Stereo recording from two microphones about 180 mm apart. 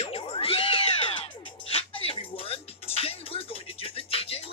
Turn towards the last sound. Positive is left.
turn(degrees=35)  # may be behind; listen again after turning